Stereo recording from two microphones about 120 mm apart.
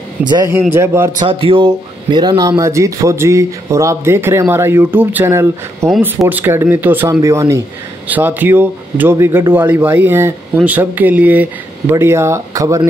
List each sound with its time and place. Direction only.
0.5 s speech: 20° right (ahead or behind)
1.2 s a man's voice: 45° right (ahead or behind); by 12.8 s 25° right (ahead or behind)